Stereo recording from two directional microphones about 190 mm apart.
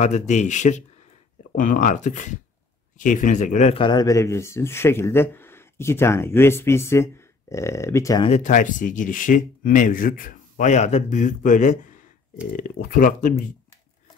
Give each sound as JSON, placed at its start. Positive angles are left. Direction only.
{"t": 0.0, "sound": "speech", "side_deg": 35}
{"t": 8.3, "sound": "speech", "side_deg": 40}